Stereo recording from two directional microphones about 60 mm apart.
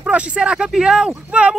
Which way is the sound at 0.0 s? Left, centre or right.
Centre.